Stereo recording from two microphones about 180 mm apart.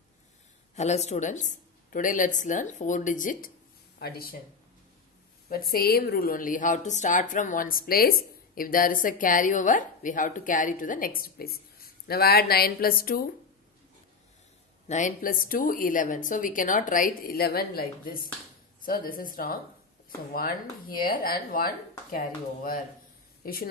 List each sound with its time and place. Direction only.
0.7 s a woman's voice: 40° left (ahead or behind); by 4.4 s 60° left (ahead or behind)
5.5 s a woman's voice: 55° left (ahead or behind)
14.9 s a woman's voice: 45° left (ahead or behind)
21.0 s a woman's voice: 55° left (ahead or behind)